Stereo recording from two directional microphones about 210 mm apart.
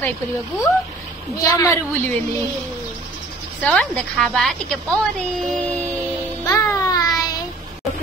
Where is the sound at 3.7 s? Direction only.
5° left (ahead or behind).